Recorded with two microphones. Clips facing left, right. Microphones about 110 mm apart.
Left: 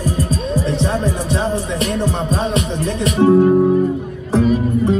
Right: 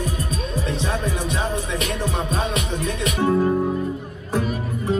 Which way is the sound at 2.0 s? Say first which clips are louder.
Left 5 dB; 35° left (ahead or behind).